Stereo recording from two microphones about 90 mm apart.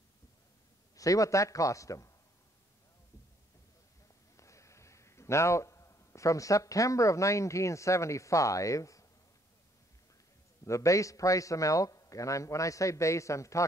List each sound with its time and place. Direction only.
0.9 s a man's voice: 40° left (ahead or behind)
4.4 s a man's voice: 35° left (ahead or behind)
10.6 s a man's voice: 35° left (ahead or behind)